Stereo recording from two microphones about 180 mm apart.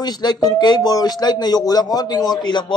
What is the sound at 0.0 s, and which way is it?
Speech, 20° left (ahead or behind).